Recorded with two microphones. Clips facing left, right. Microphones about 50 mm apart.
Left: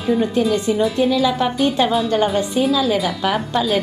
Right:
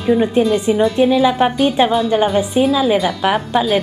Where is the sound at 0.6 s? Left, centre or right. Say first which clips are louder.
Right 4 dB; centre.